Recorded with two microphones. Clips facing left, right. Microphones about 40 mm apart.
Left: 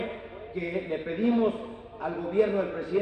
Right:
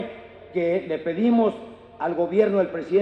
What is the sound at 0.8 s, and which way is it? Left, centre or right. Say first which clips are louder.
A man's voice: right 5 dB; right.